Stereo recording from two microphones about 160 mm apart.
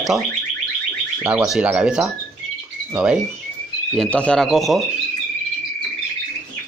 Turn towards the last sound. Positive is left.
turn(degrees=0)  # may be behind; listen again after turning